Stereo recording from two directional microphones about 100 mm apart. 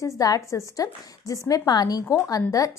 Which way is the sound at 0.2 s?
35° left (ahead or behind).